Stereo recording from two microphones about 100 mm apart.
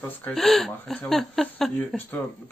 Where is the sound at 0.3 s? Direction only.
5° left (ahead or behind).